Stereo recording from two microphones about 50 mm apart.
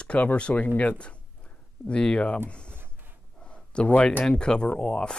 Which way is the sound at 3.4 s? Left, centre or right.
Left.